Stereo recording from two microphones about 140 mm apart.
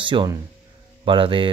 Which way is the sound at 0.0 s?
35° right (ahead or behind).